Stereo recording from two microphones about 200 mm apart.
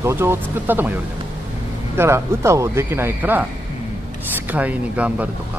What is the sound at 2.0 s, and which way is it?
Speech, 15° right (ahead or behind).